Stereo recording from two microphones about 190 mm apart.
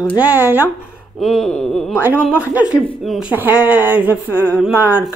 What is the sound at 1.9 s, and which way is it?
Speech, 10° right (ahead or behind).